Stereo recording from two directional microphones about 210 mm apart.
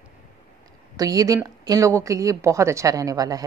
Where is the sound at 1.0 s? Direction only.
15° right (ahead or behind).